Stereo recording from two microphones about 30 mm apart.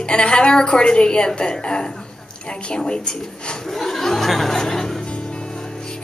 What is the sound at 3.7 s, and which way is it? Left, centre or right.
Chuckle, centre.